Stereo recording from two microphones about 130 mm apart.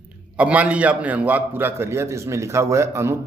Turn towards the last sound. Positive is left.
turn(degrees=-20)  # may be behind; listen again after turning